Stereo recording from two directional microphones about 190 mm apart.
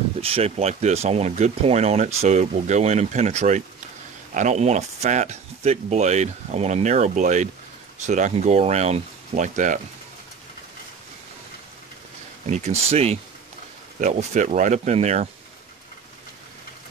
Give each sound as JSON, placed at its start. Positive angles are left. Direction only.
{"t": 0.2, "sound": "speech", "side_deg": -30}
{"t": 12.4, "sound": "speech", "side_deg": -35}